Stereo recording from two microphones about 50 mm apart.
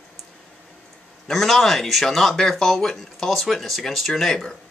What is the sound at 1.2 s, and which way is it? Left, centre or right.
Speech, centre.